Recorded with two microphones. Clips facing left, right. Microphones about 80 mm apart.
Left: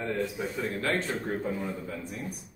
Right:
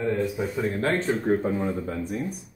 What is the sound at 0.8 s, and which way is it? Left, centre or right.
Speech, right.